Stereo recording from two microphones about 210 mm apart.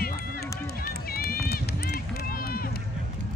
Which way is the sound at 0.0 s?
45° left (ahead or behind).